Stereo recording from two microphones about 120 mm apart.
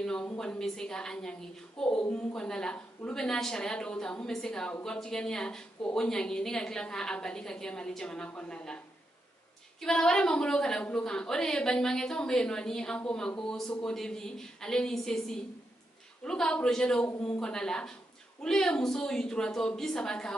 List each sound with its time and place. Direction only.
0.0 s a woman's voice: 10° left (ahead or behind)